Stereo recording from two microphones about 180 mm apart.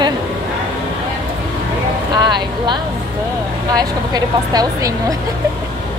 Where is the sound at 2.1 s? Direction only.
25° right (ahead or behind).